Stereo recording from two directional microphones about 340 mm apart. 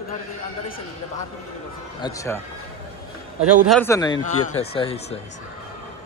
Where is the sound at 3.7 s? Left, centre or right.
Centre.